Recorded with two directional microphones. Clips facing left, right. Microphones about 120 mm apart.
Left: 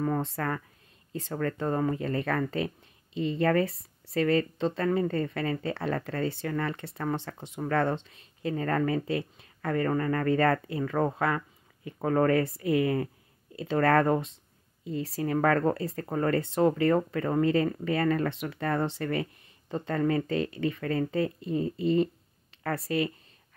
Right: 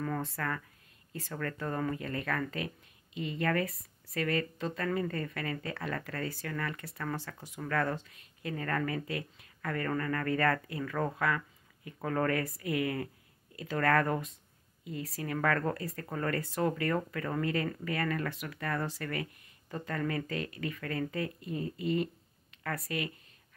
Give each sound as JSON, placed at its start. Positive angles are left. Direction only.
{"t": 0.0, "sound": "speech", "side_deg": 25}